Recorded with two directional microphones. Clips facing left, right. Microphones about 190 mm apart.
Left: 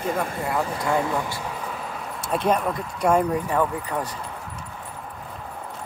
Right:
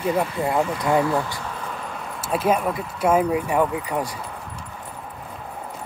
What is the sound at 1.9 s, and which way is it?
Speech, centre (ahead or behind).